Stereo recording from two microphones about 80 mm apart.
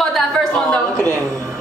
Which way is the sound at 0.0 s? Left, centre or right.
Centre.